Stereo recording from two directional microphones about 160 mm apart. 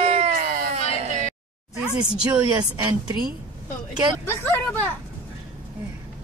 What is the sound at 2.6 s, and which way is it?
Speech, 25° right (ahead or behind).